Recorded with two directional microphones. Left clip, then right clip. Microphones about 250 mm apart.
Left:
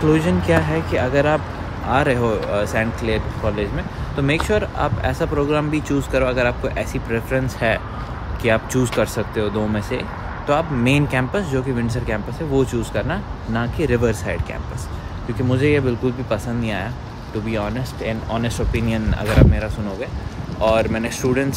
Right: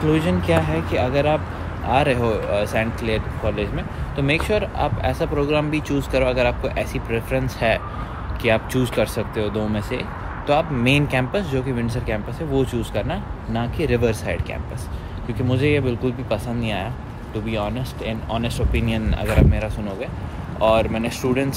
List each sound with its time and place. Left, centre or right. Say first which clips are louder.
0.2 s speech: left 2 dB; centre
15.5 s speech: left 2 dB; centre